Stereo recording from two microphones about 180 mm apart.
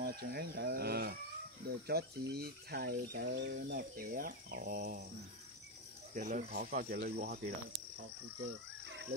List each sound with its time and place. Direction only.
0.0 s speech: 60° right (ahead or behind)
6.1 s speech: 45° right (ahead or behind)